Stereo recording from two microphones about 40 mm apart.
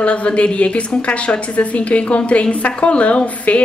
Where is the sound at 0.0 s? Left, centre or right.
Left.